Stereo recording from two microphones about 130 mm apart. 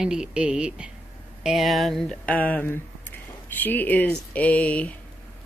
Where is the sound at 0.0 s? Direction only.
5° right (ahead or behind); by 4.9 s 10° left (ahead or behind).